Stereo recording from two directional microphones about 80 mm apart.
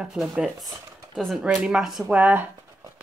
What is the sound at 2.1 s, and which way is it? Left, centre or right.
Speech, right.